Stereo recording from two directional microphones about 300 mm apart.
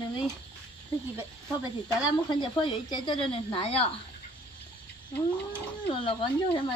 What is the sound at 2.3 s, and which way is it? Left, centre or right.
Speech, centre.